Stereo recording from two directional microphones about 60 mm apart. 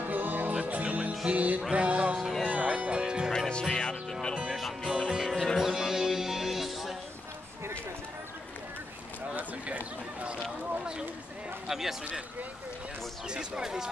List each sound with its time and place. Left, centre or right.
0.0 s music: right
2.1 s music: centre
2.4 s music: centre
3.3 s music: centre
4.4 s music: centre
5.3 s music: centre
5.7 s music: centre
9.3 s a sound: right
11.6 s a sound: centre
13.3 s a sound: centre